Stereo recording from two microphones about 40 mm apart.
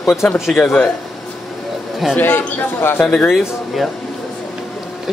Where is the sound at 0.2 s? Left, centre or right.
Left.